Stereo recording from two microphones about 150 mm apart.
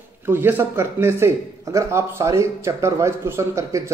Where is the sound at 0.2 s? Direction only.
15° right (ahead or behind).